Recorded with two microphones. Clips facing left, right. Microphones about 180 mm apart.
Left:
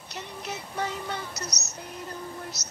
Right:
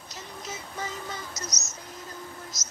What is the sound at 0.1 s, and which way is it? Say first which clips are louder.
Music: left 3 dB; 65° left (ahead or behind).